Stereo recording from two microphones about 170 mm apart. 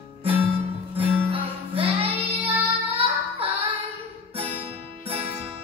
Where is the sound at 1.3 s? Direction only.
35° right (ahead or behind).